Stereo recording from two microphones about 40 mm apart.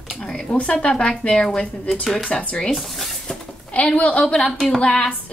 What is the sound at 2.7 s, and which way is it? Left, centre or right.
Speech, centre.